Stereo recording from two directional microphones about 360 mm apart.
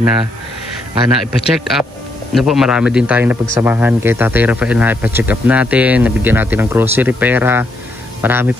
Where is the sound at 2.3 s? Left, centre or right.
Centre.